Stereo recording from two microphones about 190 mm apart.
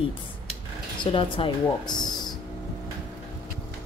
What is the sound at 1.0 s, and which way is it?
Speech, 25° left (ahead or behind).